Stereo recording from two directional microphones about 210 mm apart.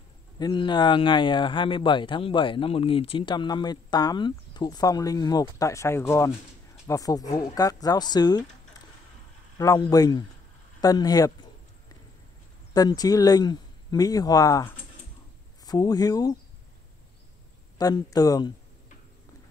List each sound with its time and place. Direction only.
0.4 s speech: 20° left (ahead or behind)
9.6 s speech: 15° left (ahead or behind)
12.7 s speech: 15° left (ahead or behind)
17.7 s speech: 20° left (ahead or behind)